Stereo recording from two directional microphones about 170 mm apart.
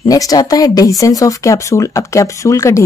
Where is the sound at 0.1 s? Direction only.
20° left (ahead or behind).